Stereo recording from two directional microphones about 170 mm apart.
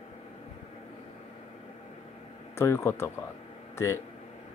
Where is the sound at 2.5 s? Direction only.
15° left (ahead or behind).